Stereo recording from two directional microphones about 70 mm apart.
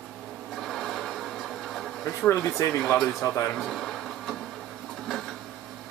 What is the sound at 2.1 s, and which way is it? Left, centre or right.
Speech, left.